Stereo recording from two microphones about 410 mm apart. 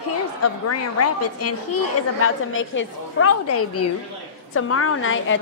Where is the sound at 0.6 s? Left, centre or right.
Left.